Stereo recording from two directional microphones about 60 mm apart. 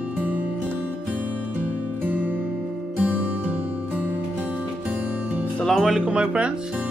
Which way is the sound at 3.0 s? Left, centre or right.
Right.